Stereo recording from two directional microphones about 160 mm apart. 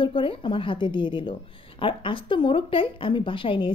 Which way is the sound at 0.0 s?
30° left (ahead or behind).